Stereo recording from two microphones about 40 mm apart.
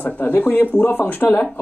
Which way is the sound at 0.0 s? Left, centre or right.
Left.